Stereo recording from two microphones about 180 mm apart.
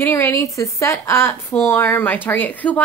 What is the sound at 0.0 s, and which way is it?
A woman's voice, 15° left (ahead or behind).